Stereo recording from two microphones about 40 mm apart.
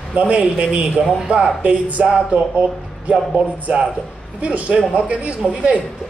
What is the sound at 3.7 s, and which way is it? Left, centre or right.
A man's voice, right.